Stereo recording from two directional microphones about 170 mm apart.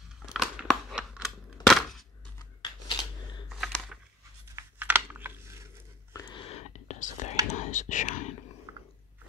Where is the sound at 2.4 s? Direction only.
25° left (ahead or behind).